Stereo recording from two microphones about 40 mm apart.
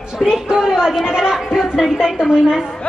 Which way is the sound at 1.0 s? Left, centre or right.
Centre.